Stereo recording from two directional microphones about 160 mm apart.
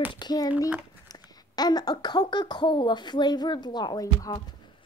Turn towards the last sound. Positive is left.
turn(degrees=25)  # may be behind; listen again after turning